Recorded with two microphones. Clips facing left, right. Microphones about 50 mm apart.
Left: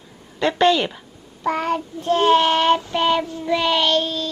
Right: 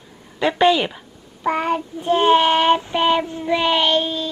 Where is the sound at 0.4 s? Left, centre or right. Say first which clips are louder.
Right 1 dB; centre.